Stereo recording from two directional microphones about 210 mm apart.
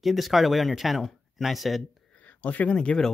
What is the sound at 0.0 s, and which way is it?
Speech, centre (ahead or behind).